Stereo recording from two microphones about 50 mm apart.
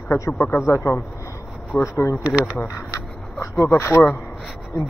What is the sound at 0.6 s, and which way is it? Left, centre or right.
Speech, left.